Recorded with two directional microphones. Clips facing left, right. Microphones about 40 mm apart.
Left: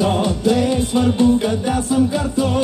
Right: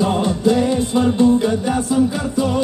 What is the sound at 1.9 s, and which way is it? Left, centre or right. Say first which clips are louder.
Music: left 2 dB; left.